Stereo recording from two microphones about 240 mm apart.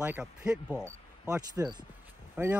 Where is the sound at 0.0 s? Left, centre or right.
Centre.